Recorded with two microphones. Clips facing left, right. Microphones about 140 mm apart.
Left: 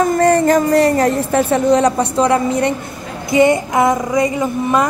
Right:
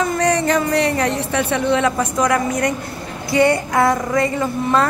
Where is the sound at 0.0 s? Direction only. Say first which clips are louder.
Left 5 dB; 45° left (ahead or behind).